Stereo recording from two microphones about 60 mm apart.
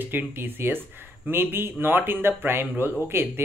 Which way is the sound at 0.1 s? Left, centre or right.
Right.